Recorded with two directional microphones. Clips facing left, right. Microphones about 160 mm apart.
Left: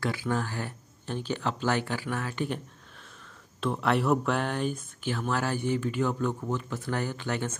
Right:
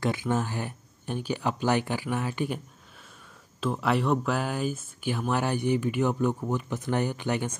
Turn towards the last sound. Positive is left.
turn(degrees=-15)  # may be behind; listen again after turning